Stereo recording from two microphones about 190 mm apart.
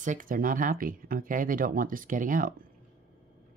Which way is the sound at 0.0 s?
45° right (ahead or behind).